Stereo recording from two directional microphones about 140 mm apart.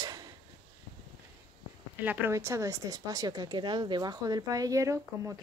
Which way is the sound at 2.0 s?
15° right (ahead or behind).